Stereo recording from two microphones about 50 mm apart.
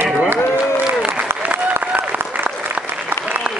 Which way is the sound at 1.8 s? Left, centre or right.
Right.